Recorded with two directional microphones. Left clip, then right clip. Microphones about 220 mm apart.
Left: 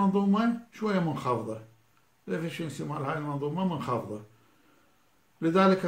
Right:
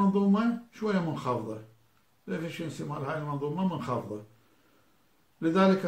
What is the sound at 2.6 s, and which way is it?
Speech, 45° left (ahead or behind).